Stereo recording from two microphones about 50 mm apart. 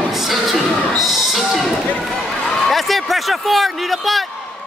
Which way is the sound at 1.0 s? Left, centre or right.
Centre.